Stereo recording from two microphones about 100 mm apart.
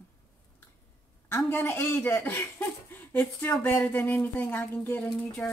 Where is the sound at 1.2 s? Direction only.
20° left (ahead or behind).